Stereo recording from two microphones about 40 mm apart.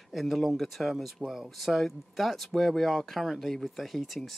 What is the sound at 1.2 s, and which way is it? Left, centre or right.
Speech, centre.